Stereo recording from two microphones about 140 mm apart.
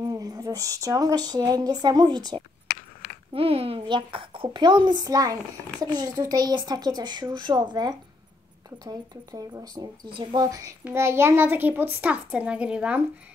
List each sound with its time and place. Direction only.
0.0 s speech: 25° right (ahead or behind)
3.3 s a woman's voice: 45° right (ahead or behind); by 13.0 s 10° right (ahead or behind)